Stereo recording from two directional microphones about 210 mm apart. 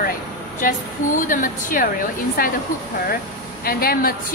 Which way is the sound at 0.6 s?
40° left (ahead or behind).